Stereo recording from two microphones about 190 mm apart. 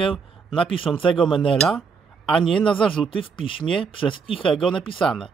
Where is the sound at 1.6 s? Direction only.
5° left (ahead or behind).